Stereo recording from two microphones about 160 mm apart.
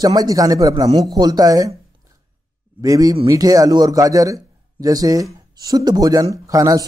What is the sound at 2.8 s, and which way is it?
A man's voice, 20° right (ahead or behind).